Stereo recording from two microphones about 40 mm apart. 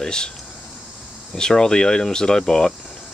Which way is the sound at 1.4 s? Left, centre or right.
Centre.